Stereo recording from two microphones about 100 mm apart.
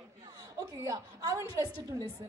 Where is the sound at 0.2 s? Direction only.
35° right (ahead or behind).